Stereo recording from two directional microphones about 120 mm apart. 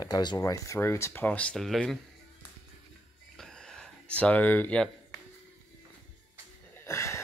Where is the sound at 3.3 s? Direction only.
5° left (ahead or behind).